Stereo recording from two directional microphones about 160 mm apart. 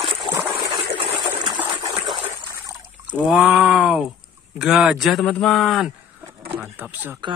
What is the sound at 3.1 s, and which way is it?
A man's voice, 5° right (ahead or behind).